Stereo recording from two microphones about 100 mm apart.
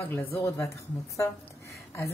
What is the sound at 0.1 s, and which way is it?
Speech, 25° left (ahead or behind).